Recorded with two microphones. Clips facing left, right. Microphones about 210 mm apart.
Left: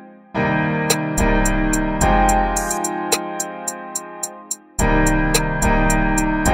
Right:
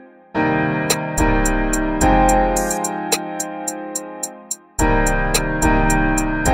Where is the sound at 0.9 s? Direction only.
Centre (ahead or behind).